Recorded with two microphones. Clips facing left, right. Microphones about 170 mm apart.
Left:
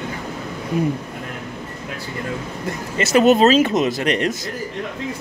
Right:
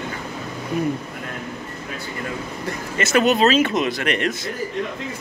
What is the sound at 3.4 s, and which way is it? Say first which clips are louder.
Speech: left 3 dB; 35° left (ahead or behind).